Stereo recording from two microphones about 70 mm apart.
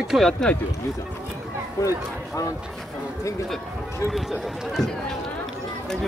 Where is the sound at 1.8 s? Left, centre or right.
Left.